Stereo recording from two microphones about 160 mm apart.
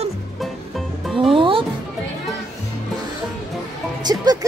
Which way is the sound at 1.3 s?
35° right (ahead or behind).